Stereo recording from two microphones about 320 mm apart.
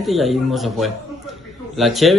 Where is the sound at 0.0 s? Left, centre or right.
Centre.